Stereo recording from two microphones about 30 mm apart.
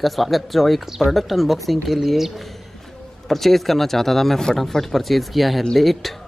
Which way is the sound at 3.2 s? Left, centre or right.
Centre.